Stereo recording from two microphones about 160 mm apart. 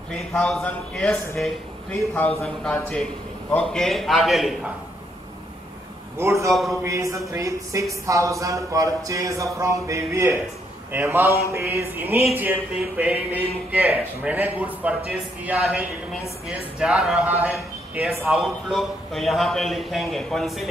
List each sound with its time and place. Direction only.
0.1 s a man's voice: 5° left (ahead or behind)
6.1 s a man's voice: 15° right (ahead or behind)
6.5 s a man's voice: centre (ahead or behind)
6.8 s a sound: 20° right (ahead or behind)
10.9 s a man's voice: 10° right (ahead or behind)